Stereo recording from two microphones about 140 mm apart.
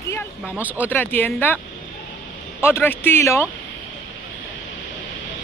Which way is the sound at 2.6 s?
15° left (ahead or behind).